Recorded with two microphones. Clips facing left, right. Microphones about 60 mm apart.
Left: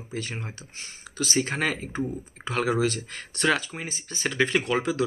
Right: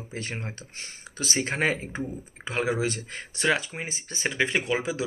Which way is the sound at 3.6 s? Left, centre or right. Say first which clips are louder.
Even; right.